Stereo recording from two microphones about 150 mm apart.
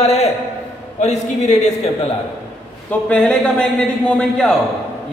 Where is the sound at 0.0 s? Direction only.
45° left (ahead or behind).